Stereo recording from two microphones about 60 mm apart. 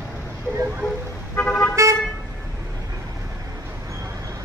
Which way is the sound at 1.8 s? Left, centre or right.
Right.